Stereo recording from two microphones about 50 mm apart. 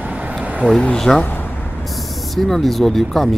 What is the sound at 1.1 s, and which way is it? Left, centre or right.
Speech, centre.